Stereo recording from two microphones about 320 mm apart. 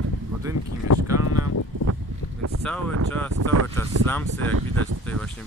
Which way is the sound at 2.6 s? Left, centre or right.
Centre.